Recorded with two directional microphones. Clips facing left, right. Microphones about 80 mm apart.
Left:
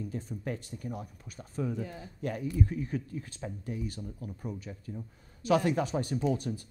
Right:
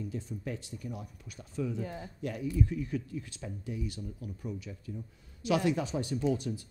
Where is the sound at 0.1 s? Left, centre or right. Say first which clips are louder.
Left 2 dB; left.